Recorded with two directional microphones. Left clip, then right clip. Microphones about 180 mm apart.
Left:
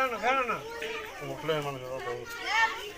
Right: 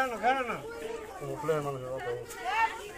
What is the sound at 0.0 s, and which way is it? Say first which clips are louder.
Speech: left 1 dB; 40° right (ahead or behind).